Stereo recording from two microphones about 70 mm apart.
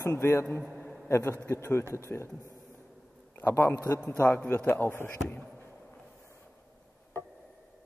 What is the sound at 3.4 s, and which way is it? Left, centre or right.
A man's voice, left.